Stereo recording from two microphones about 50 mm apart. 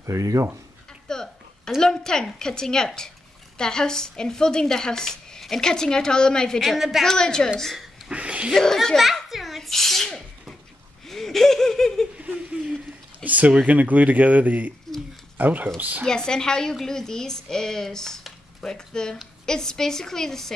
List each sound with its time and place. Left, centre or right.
0.0 s speech: right
1.0 s a sound: centre
1.8 s a woman's voice: centre
6.8 s a woman's voice: centre
7.1 s a woman's voice: centre
7.5 s a woman's voice: centre
8.1 s a sound: right
8.5 s a sound: centre
11.1 s laughter: centre
13.2 s speech: right
16.1 s a woman's voice: centre